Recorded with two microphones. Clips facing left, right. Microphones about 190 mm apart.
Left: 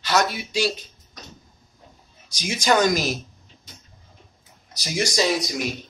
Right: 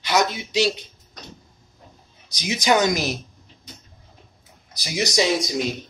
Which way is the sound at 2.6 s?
15° right (ahead or behind).